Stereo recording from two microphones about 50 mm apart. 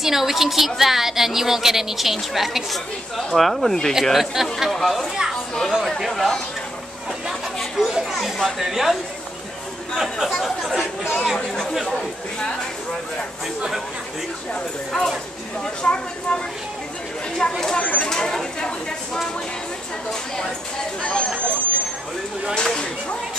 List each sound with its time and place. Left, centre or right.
0.0 s a woman's voice: centre
5.5 s chatter: centre
5.9 s chatter: centre
7.7 s a sound: centre
8.6 s a woman's voice: centre
9.9 s a woman's voice: centre
15.6 s speech: centre
17.4 s speech: centre
17.7 s speech: left
20.1 s speech: centre
21.0 s speech: centre
22.5 s speech: centre